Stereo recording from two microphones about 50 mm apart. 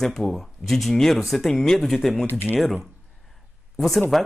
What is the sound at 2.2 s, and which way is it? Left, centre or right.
Speech, left.